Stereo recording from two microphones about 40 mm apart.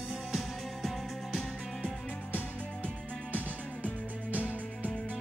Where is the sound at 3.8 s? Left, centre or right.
Right.